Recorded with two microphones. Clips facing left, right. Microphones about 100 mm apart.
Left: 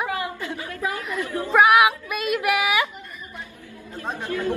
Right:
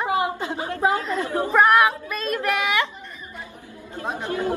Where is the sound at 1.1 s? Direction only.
30° right (ahead or behind).